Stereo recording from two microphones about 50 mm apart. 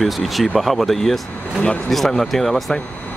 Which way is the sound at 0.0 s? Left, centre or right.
Centre.